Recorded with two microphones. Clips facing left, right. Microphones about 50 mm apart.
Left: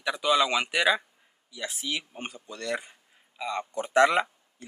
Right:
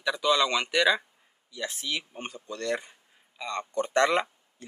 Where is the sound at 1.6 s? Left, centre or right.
Left.